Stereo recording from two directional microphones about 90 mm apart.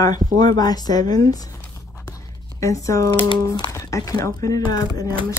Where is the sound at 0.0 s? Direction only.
50° left (ahead or behind).